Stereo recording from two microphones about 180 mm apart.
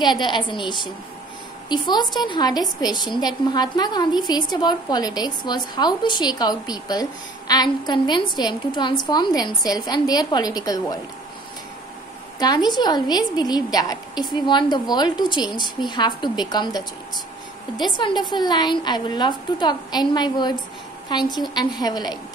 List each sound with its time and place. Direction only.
0.0 s a woman's voice: 25° left (ahead or behind)
12.4 s a woman's voice: 25° left (ahead or behind)